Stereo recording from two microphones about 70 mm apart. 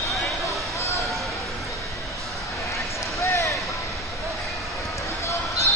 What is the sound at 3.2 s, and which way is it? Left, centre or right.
Basketball bounce, left.